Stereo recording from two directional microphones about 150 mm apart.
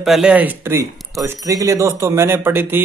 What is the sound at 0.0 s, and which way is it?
Speech, 5° right (ahead or behind).